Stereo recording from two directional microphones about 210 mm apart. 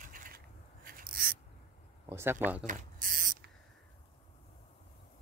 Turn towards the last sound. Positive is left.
turn(degrees=-40)  # may be behind; listen again after turning